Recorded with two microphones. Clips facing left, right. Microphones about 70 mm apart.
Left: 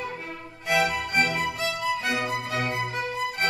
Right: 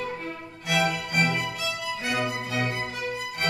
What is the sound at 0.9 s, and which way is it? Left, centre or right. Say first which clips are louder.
Music: left 1 dB; left.